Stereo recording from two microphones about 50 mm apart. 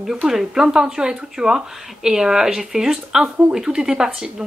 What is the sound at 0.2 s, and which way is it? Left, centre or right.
Speech, centre.